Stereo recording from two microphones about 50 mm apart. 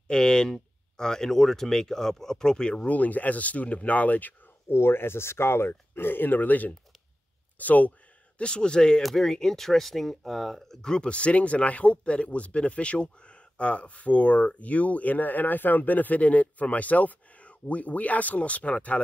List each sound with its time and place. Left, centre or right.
0.1 s speech: centre
2.9 s speech: left
4.6 s speech: left
8.4 s speech: centre